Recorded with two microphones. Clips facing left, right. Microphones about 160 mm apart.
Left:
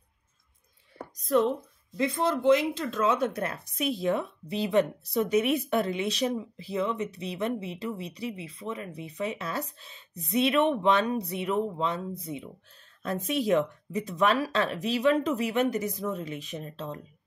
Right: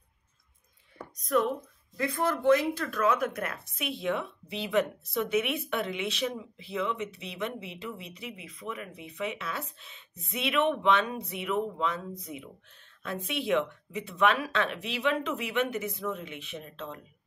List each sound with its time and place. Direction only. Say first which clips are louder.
1.2 s speech: left 3 dB; 30° left (ahead or behind)
13.0 s speech: left 5 dB; 40° left (ahead or behind)